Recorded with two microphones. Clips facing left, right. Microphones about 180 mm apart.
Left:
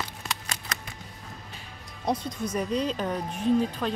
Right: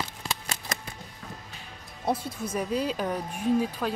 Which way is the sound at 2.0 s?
5° right (ahead or behind).